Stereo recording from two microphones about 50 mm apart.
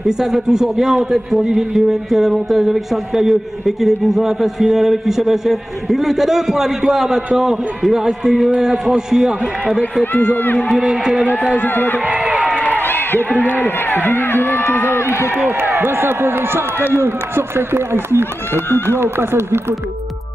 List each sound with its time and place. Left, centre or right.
0.0 s a man's voice: centre
10.1 s a man's voice: left
10.8 s a man's voice: centre
11.2 s a man's voice: left
12.1 s run: centre
12.7 s a sound: left
13.3 s a man's voice: left
13.8 s speech: left
15.3 s a man's voice: right
18.5 s speech: left
18.9 s speech: right